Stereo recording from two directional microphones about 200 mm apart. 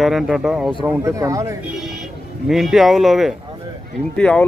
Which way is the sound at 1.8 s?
Centre (ahead or behind).